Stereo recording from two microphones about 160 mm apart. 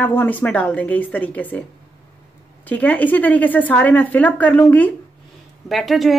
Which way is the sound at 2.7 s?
10° left (ahead or behind).